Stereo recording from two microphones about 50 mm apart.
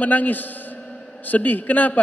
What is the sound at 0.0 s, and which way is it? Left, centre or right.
A man's voice, left.